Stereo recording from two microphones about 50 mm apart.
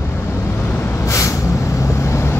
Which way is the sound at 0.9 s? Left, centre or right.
Left.